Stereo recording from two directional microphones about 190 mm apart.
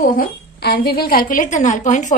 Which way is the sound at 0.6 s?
55° left (ahead or behind).